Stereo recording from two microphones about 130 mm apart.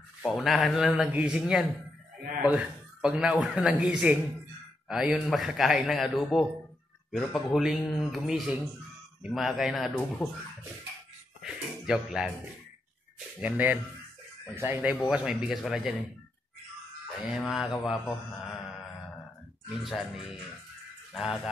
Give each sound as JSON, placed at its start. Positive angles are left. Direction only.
{"t": 0.2, "sound": "a man's voice", "side_deg": 0}
{"t": 11.4, "sound": "speech", "side_deg": -5}
{"t": 13.4, "sound": "speech", "side_deg": -10}
{"t": 15.1, "sound": "a man's voice", "side_deg": -5}
{"t": 17.3, "sound": "a man's voice", "side_deg": 0}
{"t": 19.7, "sound": "a man's voice", "side_deg": 0}